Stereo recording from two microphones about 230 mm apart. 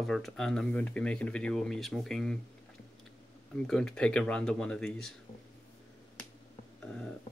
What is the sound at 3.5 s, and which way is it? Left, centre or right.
Speech, centre.